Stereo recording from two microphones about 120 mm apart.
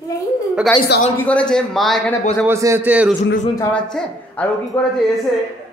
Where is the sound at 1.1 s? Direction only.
10° left (ahead or behind).